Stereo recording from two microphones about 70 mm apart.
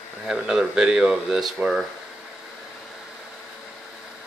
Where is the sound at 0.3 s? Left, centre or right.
Centre.